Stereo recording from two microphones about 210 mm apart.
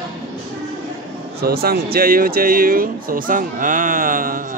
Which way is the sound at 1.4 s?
45° right (ahead or behind).